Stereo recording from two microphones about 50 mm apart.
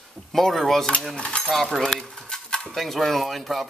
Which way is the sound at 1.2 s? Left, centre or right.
Left.